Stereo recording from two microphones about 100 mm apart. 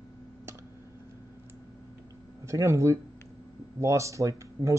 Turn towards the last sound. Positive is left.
turn(degrees=-30)  # may be behind; listen again after turning